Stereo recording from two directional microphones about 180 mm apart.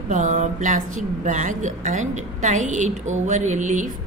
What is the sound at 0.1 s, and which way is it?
A woman's voice, 45° right (ahead or behind).